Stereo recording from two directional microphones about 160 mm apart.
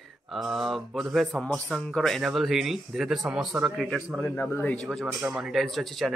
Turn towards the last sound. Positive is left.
turn(degrees=0)  # may be behind; listen again after turning